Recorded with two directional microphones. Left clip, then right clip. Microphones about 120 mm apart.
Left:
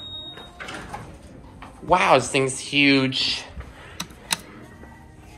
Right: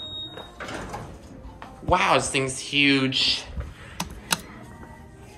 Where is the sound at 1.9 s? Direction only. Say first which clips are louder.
Left 3 dB; 15° right (ahead or behind).